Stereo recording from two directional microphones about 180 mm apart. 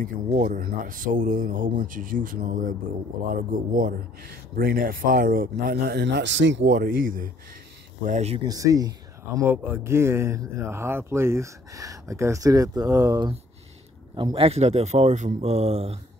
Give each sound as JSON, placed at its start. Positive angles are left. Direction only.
{"t": 0.0, "sound": "speech", "side_deg": -50}
{"t": 8.0, "sound": "speech", "side_deg": -40}
{"t": 8.5, "sound": "speech", "side_deg": -20}
{"t": 14.1, "sound": "speech", "side_deg": -30}